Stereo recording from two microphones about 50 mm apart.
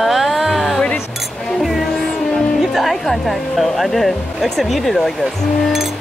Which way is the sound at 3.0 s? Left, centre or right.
Centre.